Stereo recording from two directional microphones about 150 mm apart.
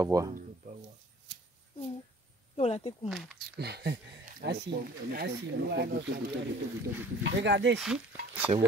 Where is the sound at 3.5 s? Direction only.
90° right.